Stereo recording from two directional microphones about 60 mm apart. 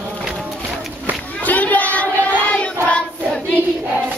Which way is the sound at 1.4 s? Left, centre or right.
Left.